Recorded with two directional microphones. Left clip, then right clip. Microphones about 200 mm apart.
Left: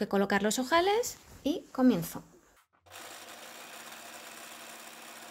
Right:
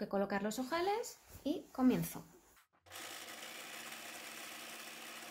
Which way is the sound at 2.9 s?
Centre (ahead or behind).